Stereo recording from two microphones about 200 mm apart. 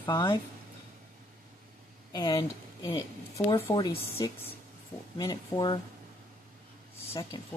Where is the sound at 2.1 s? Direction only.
20° left (ahead or behind).